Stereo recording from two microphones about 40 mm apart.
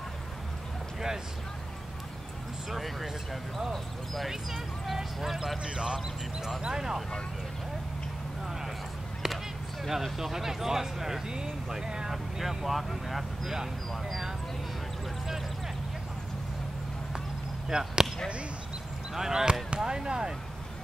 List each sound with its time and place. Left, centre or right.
2.7 s speech: centre
4.3 s speech: centre
5.6 s speech: right
9.2 s a sound: centre
9.8 s speech: centre
12.1 s speech: centre
17.6 s chop: centre
19.1 s speech: centre